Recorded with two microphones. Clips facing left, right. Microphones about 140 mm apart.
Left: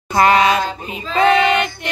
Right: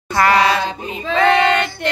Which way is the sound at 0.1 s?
20° left (ahead or behind).